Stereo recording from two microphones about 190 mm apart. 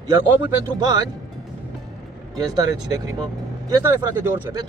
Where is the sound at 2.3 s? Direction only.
20° right (ahead or behind).